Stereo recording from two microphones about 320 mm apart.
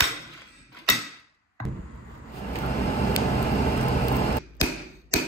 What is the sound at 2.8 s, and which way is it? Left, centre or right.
Vehicle, centre.